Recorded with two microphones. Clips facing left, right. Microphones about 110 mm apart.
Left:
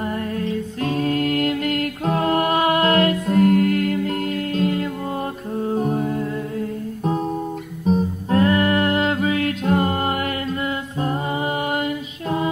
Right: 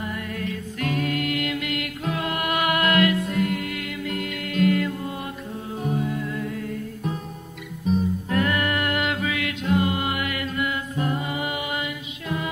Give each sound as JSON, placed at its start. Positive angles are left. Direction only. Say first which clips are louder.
{"t": 0.4, "sound": "music", "louder": "left 5 dB", "side_deg": 30}
{"t": 5.7, "sound": "music", "louder": "left 5 dB", "side_deg": 45}
{"t": 7.8, "sound": "music", "louder": "left 3 dB", "side_deg": 35}